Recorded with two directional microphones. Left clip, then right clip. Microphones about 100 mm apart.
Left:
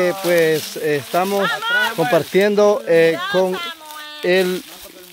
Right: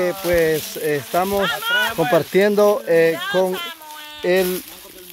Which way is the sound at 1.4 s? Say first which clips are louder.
Left 1 dB; 10° right (ahead or behind).